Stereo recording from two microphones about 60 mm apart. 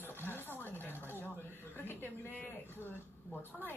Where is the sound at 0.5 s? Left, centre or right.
Left.